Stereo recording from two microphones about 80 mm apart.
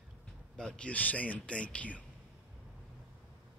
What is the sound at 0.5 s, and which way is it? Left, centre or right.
Speech, centre.